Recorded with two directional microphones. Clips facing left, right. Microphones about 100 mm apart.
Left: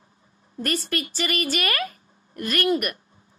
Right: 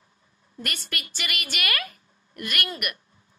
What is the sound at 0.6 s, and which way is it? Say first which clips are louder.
A woman's voice: left 8 dB; 35° left (ahead or behind).